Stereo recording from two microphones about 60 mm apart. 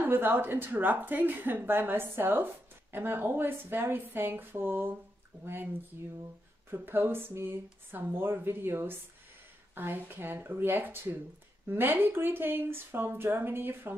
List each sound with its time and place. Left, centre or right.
0.0 s speech: right
6.7 s speech: right